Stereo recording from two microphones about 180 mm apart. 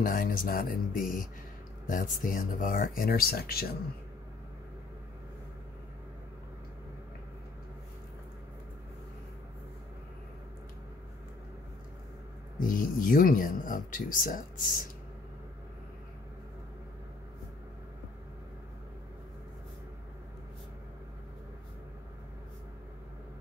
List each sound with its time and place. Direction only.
0.0 s speech: 50° left (ahead or behind)
12.5 s speech: 50° left (ahead or behind)